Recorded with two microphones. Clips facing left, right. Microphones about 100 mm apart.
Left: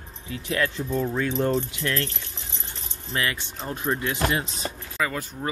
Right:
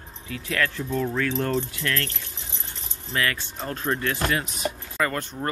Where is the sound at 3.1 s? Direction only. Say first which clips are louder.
Right 1 dB; 20° left (ahead or behind).